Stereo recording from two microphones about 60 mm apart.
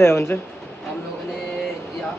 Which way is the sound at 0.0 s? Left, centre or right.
Left.